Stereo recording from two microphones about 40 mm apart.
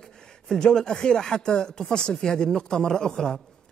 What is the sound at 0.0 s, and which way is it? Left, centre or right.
A man's voice, centre.